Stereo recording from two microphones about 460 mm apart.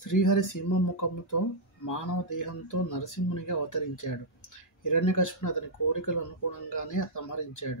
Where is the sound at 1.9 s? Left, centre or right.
Left.